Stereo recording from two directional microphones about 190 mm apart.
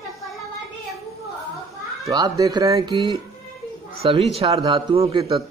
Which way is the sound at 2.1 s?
20° right (ahead or behind).